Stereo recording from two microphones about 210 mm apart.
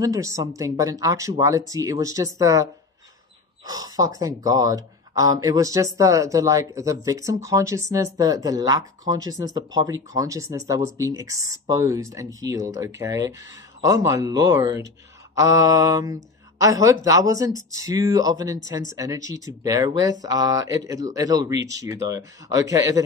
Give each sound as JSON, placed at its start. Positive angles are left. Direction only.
{"t": 0.0, "sound": "speech", "side_deg": -15}